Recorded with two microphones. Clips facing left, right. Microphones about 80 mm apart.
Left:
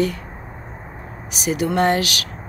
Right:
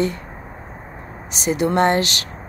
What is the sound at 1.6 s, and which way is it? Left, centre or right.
Speech, right.